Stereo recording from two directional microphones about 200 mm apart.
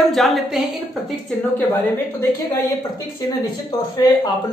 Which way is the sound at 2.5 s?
15° left (ahead or behind).